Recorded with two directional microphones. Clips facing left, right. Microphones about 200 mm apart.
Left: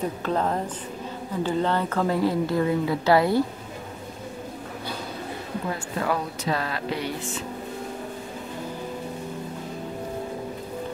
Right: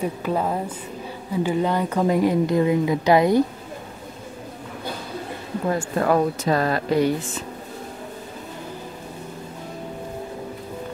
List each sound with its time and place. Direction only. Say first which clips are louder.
0.0 s speech: right 2 dB; 10° right (ahead or behind)
5.8 s speech: right 9 dB; 45° right (ahead or behind)